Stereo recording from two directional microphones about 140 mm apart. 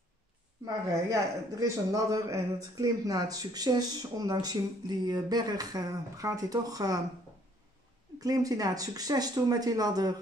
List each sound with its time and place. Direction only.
0.7 s speech: 25° right (ahead or behind)
8.2 s speech: 25° right (ahead or behind)